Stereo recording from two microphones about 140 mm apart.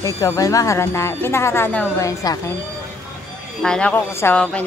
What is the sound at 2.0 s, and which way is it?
Speech, 25° left (ahead or behind).